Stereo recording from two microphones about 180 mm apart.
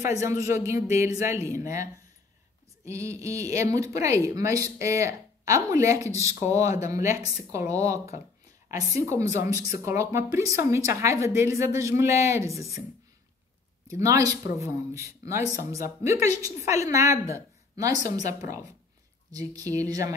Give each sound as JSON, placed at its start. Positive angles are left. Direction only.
{"t": 0.0, "sound": "speech", "side_deg": -15}
{"t": 13.9, "sound": "speech", "side_deg": -20}